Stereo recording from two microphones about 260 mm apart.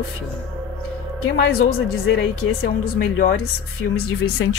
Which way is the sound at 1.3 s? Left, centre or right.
Left.